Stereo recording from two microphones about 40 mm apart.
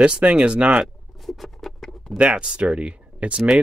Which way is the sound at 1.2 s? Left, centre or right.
Centre.